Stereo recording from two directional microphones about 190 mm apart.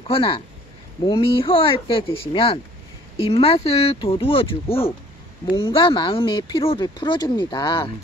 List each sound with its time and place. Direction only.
0.1 s speech: 30° left (ahead or behind)